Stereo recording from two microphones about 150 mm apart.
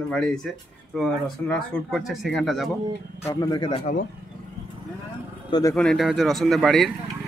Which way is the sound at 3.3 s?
25° left (ahead or behind).